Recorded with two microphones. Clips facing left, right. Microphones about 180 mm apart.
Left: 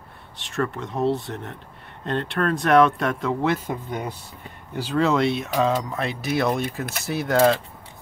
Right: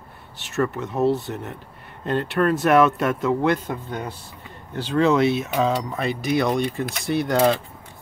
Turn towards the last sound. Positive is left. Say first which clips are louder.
# even
turn(degrees=0)  # may be behind; listen again after turning